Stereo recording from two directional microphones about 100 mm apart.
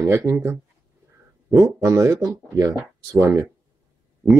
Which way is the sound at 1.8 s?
30° right (ahead or behind).